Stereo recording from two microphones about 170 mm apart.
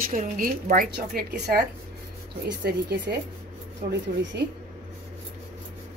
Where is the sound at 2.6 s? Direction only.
70° right (ahead or behind).